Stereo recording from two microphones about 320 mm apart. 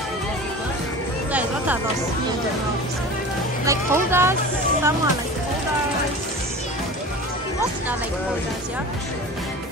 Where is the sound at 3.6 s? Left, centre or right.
Centre.